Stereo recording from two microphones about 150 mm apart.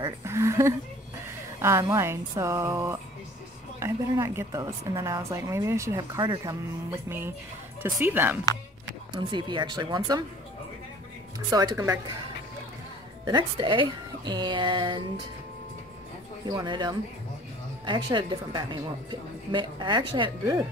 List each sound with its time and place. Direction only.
0.0 s a woman's voice: 20° right (ahead or behind)
9.1 s a woman's voice: 30° right (ahead or behind)
11.3 s a woman's voice: 25° right (ahead or behind)
13.2 s a woman's voice: 30° right (ahead or behind)
16.4 s a woman's voice: 30° right (ahead or behind)